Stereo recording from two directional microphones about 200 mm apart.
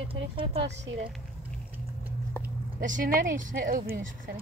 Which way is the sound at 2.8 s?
40° right (ahead or behind).